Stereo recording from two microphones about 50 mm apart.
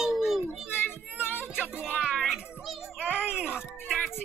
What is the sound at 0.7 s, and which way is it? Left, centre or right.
Children playing, left.